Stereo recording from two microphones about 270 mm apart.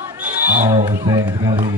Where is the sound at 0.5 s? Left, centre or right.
Centre.